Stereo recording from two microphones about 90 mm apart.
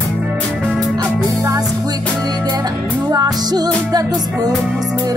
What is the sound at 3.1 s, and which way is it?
Music, 45° right (ahead or behind).